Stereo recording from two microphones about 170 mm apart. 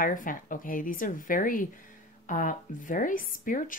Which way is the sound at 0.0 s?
55° left (ahead or behind).